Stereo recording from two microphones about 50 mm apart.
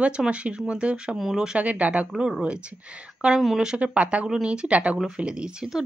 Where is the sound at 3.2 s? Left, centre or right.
Centre.